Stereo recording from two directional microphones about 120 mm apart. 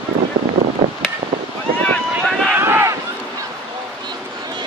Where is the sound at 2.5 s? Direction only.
20° right (ahead or behind).